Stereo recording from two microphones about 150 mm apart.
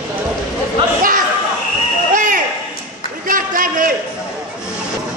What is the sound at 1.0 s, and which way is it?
Chatter, 65° right (ahead or behind).